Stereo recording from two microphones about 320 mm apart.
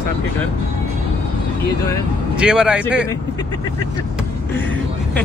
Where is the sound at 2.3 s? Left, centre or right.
Centre.